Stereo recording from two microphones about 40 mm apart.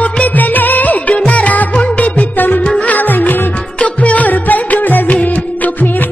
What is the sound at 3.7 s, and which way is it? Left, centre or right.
Music, left.